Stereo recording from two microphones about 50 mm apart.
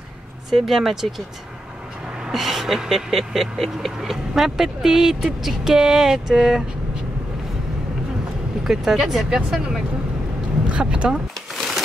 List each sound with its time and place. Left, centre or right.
0.5 s speech: centre
2.3 s vehicle: centre
8.6 s vehicle: centre
11.5 s a sound: centre